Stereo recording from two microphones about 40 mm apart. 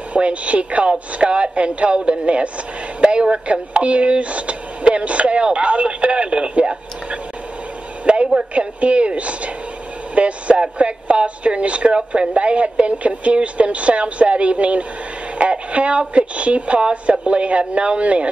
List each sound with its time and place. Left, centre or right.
0.1 s speech: right
8.0 s a sound: right
8.4 s speech: right